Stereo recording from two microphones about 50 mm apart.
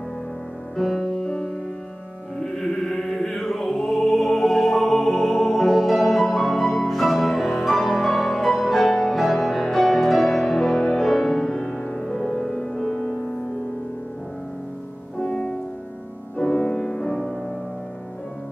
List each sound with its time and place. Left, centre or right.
0.7 s music: centre
2.5 s music: centre
11.7 s music: centre
12.0 s music: centre
15.1 s music: centre